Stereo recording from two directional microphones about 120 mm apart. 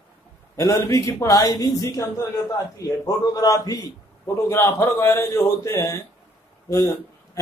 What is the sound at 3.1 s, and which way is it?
A man's voice, 30° left (ahead or behind).